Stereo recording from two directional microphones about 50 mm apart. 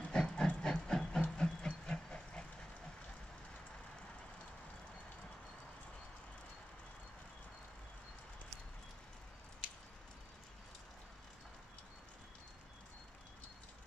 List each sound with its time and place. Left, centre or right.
0.1 s train: centre
9.6 s squish: right